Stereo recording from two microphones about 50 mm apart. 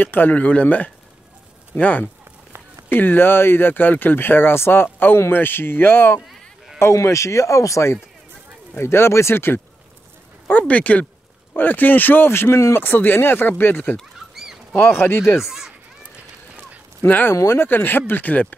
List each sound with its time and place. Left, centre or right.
0.0 s speech: left
0.4 s speech: left
2.9 s speech: left
6.8 s speech: left
8.7 s speech: left
10.7 s speech: left
11.5 s speech: left
12.3 s speech: left
14.3 s a sound: centre
14.8 s speech: left
15.4 s speech: centre
17.3 s speech: left